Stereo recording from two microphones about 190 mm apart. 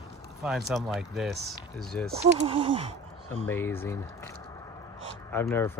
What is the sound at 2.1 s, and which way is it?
Speech, 35° right (ahead or behind).